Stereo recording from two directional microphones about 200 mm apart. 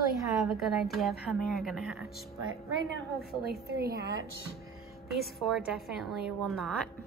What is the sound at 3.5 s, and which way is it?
Speech, 50° right (ahead or behind).